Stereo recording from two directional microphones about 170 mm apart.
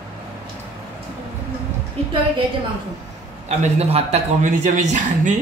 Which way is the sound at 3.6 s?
35° right (ahead or behind).